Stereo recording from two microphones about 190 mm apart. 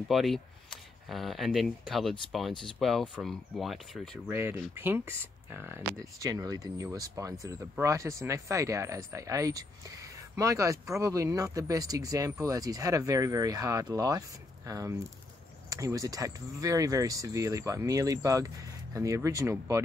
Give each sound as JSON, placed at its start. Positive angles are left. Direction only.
{"t": 0.1, "sound": "speech", "side_deg": 0}
{"t": 4.3, "sound": "speech", "side_deg": -10}